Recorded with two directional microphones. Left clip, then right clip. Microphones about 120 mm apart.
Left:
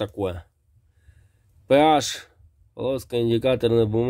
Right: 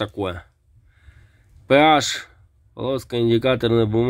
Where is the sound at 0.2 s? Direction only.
15° left (ahead or behind).